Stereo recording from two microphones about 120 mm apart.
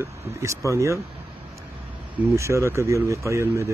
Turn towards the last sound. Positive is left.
turn(degrees=-25)  # may be behind; listen again after turning